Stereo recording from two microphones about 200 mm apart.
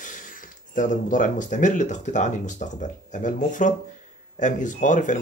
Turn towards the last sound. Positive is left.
turn(degrees=40)  # may be behind; listen again after turning